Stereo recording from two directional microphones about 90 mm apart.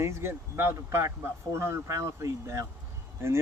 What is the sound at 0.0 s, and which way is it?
Speech, 30° right (ahead or behind).